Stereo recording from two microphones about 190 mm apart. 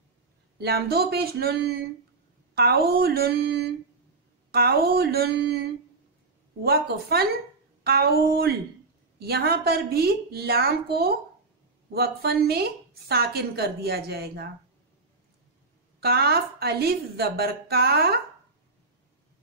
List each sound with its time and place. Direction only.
0.6 s a woman's voice: 55° right (ahead or behind)
2.5 s a woman's voice: 55° right (ahead or behind)
6.6 s a woman's voice: 55° right (ahead or behind)
16.0 s a woman's voice: 55° right (ahead or behind)